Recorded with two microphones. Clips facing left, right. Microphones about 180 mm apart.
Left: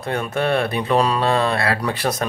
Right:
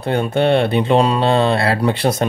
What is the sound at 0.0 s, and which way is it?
Speech, 30° right (ahead or behind).